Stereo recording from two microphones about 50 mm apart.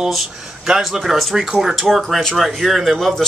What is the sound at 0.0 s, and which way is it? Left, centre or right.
Speech, centre.